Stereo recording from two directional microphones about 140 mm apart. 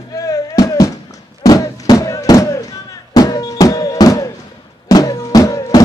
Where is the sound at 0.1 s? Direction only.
25° left (ahead or behind).